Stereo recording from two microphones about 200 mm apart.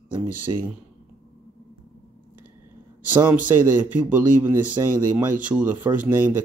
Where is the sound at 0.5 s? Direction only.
25° right (ahead or behind).